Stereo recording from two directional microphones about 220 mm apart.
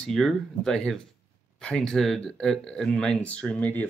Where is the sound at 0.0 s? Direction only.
Centre (ahead or behind).